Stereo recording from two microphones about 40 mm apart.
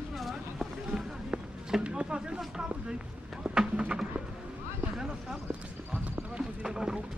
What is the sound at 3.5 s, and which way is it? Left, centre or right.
Speech, right.